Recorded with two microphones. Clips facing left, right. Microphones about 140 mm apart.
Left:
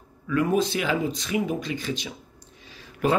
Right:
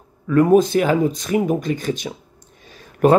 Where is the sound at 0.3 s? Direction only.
45° right (ahead or behind).